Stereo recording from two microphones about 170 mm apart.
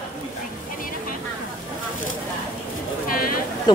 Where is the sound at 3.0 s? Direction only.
55° left (ahead or behind).